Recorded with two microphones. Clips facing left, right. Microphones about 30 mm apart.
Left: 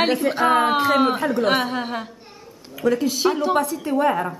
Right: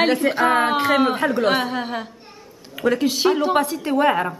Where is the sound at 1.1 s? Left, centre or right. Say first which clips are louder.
Right 1 dB; right.